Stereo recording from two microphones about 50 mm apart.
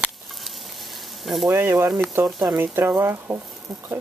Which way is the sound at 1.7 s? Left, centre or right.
Right.